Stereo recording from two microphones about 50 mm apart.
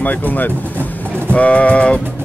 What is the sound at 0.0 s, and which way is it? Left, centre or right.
Speech, left.